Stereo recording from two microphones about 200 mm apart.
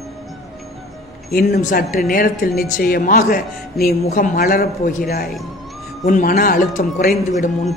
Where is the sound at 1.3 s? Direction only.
45° left (ahead or behind).